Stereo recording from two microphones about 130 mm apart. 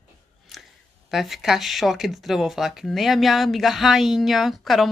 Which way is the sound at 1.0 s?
Centre (ahead or behind).